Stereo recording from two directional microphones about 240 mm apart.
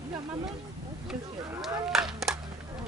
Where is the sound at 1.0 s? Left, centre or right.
Centre.